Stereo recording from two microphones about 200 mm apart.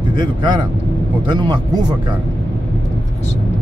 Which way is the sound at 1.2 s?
20° right (ahead or behind).